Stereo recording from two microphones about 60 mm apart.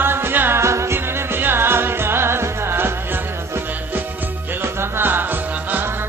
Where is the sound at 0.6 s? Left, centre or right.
Right.